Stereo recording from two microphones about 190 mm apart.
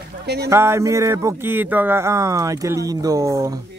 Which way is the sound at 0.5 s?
15° right (ahead or behind).